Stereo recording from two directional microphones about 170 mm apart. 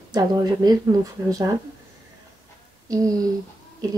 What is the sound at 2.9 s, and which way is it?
Speech, 20° right (ahead or behind).